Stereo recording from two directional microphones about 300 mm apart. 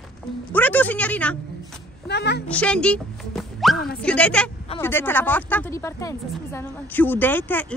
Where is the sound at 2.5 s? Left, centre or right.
Centre.